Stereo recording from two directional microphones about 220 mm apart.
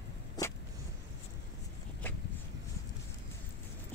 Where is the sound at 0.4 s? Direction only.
20° left (ahead or behind).